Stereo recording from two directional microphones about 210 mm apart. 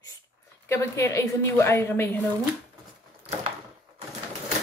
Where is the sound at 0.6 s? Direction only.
15° left (ahead or behind).